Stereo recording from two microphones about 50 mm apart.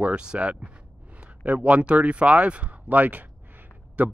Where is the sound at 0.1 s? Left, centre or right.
Centre.